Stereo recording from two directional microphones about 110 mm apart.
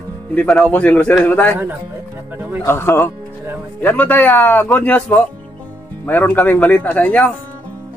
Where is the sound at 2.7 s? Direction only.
20° left (ahead or behind).